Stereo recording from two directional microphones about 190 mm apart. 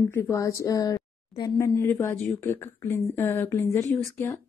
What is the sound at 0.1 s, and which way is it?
Speech, 15° left (ahead or behind).